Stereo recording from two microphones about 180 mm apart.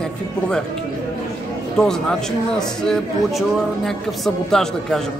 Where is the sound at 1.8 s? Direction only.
5° left (ahead or behind).